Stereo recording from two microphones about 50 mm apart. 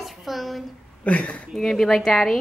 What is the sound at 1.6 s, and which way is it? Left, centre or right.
Speech, centre.